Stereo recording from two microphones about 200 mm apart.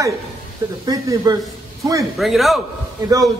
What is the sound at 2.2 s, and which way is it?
Speech, centre (ahead or behind).